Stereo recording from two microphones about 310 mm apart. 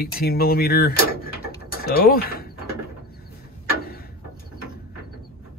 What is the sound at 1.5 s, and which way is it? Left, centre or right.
Bird, left.